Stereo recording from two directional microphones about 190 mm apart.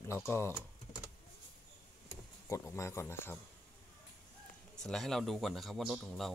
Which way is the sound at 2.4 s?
15° left (ahead or behind).